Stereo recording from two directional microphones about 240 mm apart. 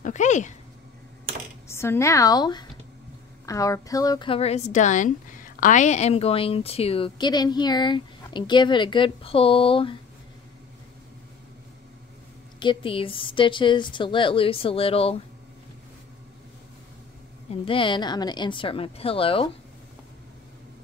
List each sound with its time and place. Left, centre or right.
0.0 s speech: left
1.7 s a woman's voice: centre
12.5 s a woman's voice: left
17.5 s a woman's voice: left